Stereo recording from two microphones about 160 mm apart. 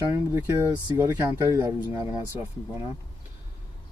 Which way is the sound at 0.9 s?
20° right (ahead or behind).